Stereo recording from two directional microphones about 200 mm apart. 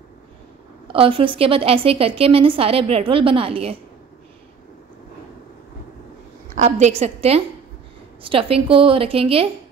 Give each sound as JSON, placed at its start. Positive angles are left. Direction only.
{"t": 0.8, "sound": "a woman's voice", "side_deg": -25}
{"t": 6.5, "sound": "a woman's voice", "side_deg": -35}